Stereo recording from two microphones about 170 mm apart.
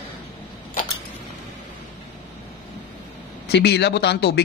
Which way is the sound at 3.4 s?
75° left (ahead or behind).